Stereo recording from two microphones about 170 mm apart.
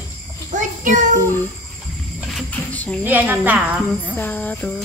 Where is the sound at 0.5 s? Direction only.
50° right (ahead or behind).